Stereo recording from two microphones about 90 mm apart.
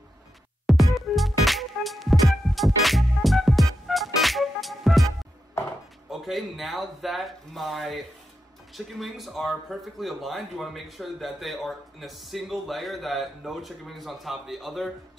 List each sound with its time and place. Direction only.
0.7 s music: centre (ahead or behind)
6.0 s speech: centre (ahead or behind)